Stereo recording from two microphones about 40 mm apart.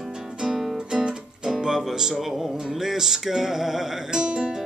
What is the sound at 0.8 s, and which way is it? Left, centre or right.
Music, centre.